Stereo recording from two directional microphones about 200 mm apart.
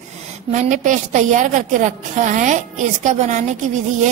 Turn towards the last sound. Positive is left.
turn(degrees=-40)  # may be behind; listen again after turning